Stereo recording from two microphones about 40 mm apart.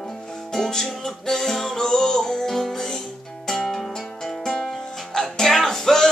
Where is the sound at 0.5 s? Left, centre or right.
Centre.